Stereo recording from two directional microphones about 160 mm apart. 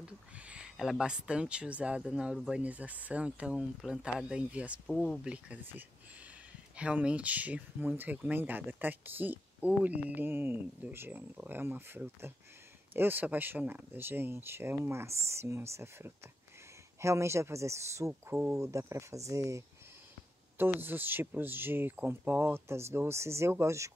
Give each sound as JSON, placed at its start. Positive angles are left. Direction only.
{"t": 0.0, "sound": "speech", "side_deg": -5}
{"t": 5.3, "sound": "speech", "side_deg": -10}
{"t": 20.8, "sound": "speech", "side_deg": -10}